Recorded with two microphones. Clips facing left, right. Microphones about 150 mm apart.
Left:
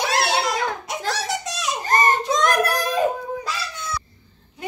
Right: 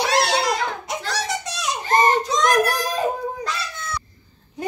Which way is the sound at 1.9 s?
50° left (ahead or behind).